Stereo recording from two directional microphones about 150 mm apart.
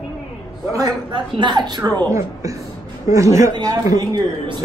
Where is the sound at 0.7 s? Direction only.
25° right (ahead or behind).